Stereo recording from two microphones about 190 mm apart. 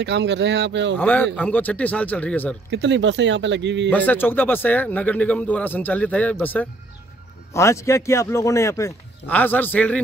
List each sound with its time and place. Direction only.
0.0 s speech: 65° right (ahead or behind)
0.9 s speech: 10° left (ahead or behind)
2.7 s speech: 70° right (ahead or behind)
3.9 s speech: 10° left (ahead or behind)